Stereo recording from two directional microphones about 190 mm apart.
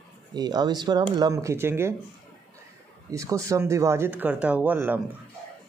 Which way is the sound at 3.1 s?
15° right (ahead or behind).